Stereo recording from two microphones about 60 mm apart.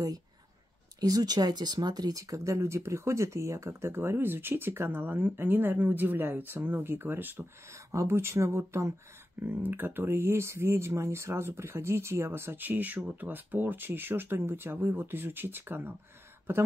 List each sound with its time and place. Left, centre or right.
1.0 s speech: right
7.7 s speech: right
9.4 s speech: right